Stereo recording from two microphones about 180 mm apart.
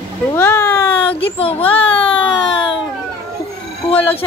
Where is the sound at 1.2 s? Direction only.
30° left (ahead or behind).